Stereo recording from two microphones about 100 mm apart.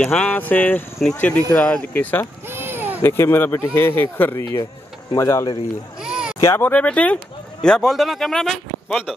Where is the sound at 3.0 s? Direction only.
25° left (ahead or behind).